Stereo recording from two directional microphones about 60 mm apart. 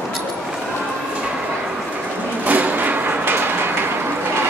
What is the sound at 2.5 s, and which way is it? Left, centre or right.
Sliding door, right.